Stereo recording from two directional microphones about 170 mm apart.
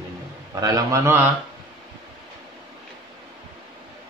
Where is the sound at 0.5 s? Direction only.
20° right (ahead or behind).